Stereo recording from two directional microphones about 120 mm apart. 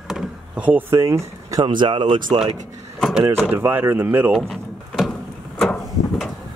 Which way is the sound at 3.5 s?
15° right (ahead or behind).